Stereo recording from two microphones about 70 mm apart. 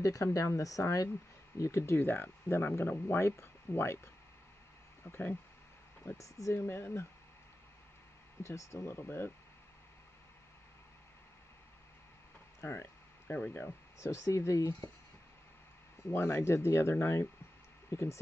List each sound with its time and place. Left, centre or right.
0.0 s speech: left
6.0 s speech: left
6.6 s speech: left
8.4 s speech: left
12.6 s speech: left
13.3 s speech: left
13.9 s speech: left
16.1 s speech: left